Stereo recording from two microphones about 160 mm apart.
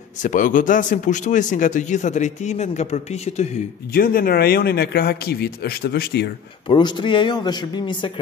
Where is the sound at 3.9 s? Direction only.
65° left (ahead or behind); by 6.2 s 85° left.